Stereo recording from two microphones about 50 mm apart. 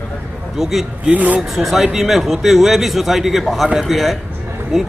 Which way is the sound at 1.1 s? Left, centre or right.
Right.